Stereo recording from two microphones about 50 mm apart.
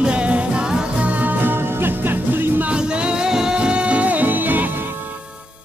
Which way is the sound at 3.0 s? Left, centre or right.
Centre.